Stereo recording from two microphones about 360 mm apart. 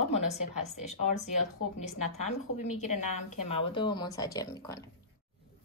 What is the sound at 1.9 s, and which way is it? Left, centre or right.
A woman's voice, left.